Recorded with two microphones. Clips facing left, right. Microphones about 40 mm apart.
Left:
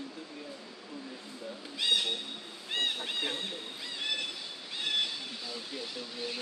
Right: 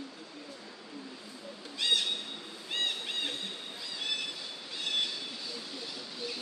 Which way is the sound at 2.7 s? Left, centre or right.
Centre.